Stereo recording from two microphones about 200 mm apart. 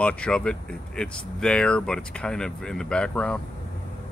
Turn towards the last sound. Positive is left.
turn(degrees=5)  # may be behind; listen again after turning